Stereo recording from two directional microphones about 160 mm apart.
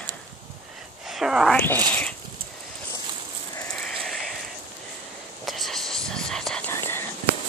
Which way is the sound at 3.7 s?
5° left (ahead or behind).